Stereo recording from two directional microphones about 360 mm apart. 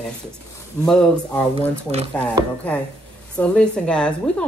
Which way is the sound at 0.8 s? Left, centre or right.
Centre.